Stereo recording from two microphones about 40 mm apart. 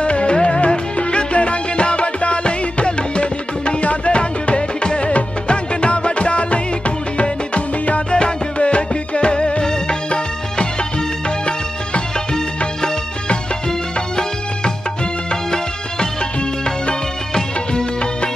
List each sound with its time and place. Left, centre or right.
0.0 s music: left
17.3 s music of bollywood: centre